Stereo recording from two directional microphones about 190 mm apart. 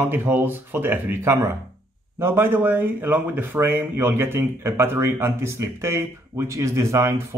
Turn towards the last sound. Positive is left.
turn(degrees=-15)  # may be behind; listen again after turning